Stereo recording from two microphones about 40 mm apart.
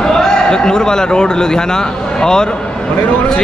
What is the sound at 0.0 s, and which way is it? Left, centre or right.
A man's voice, centre.